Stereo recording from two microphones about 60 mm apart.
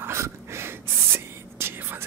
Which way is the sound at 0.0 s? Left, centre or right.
Right.